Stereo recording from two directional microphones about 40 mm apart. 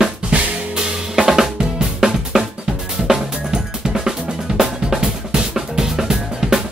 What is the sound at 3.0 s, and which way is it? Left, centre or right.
Drum, centre.